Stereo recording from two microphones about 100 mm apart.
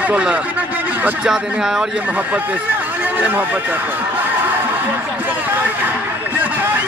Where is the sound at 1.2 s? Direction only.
5° right (ahead or behind).